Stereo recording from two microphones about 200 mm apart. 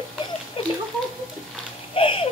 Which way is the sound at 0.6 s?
25° left (ahead or behind).